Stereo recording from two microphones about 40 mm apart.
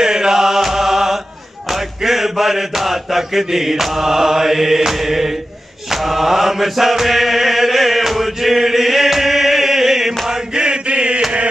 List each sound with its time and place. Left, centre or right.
0.0 s chant: centre
1.7 s mantra: centre
10.2 s chant: centre